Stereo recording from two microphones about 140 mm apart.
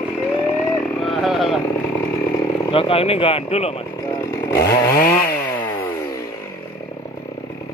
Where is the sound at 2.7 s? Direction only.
40° left (ahead or behind).